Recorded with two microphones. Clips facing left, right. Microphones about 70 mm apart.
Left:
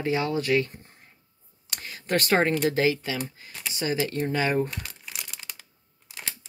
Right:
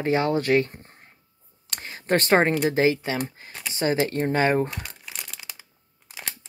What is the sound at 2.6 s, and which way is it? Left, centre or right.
Speech, right.